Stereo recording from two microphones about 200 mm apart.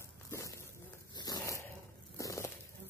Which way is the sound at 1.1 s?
20° left (ahead or behind).